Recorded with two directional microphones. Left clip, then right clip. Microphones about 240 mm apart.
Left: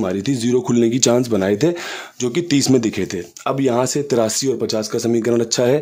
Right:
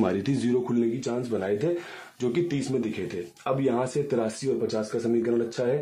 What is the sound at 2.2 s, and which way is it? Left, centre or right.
Speech, left.